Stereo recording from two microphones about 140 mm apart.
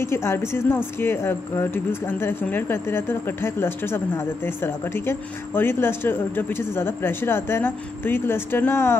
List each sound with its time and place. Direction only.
0.0 s speech: 20° left (ahead or behind)